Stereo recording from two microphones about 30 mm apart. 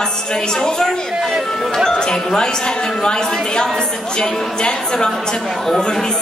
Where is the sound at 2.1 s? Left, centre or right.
Left.